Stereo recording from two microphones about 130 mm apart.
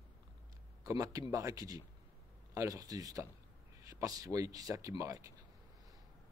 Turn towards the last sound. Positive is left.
turn(degrees=-25)  # may be behind; listen again after turning